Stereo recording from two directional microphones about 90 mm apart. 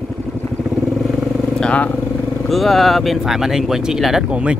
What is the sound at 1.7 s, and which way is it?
Speech, 15° left (ahead or behind).